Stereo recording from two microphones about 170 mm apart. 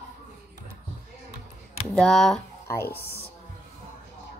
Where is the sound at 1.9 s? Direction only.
5° left (ahead or behind).